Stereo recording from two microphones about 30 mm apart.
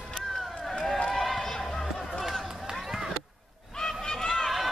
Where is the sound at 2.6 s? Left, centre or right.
Centre.